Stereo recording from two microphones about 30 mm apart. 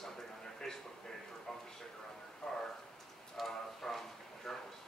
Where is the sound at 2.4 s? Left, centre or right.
Left.